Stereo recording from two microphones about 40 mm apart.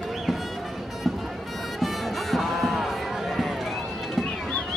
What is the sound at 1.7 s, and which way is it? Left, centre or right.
Music, centre.